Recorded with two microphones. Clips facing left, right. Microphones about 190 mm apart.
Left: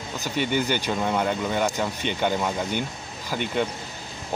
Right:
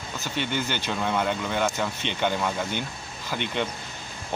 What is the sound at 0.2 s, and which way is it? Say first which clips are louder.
Speech: left 4 dB; 10° left (ahead or behind).